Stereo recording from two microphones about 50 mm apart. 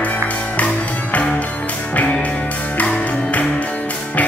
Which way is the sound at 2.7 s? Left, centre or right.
Left.